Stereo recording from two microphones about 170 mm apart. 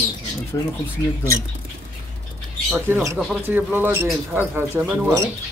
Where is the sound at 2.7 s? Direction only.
15° right (ahead or behind).